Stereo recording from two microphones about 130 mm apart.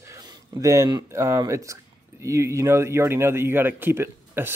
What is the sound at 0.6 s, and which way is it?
A man's voice, 25° right (ahead or behind).